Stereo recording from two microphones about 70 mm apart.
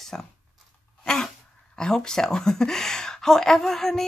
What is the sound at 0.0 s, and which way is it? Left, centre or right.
Speech, centre.